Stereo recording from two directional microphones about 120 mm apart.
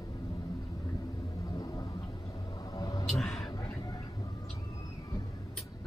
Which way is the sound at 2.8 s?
30° left (ahead or behind).